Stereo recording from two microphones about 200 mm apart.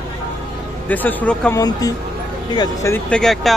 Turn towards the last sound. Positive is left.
turn(degrees=0)  # may be behind; listen again after turning